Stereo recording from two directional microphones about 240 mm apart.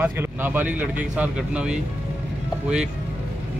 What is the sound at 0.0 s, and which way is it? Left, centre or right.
Speech, centre.